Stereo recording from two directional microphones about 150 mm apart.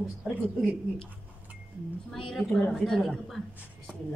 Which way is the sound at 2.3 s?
5° left (ahead or behind).